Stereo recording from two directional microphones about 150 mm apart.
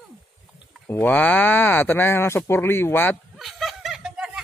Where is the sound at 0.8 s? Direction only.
10° left (ahead or behind).